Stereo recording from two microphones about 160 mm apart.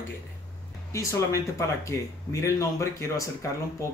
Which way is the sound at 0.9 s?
20° left (ahead or behind).